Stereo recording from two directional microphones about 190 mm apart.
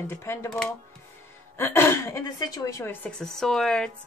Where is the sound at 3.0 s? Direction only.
5° left (ahead or behind).